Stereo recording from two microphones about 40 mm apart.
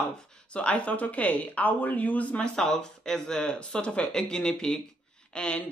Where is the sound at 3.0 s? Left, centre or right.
Centre.